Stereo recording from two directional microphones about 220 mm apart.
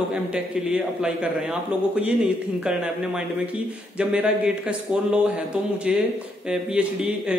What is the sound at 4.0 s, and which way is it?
Speech, 5° right (ahead or behind).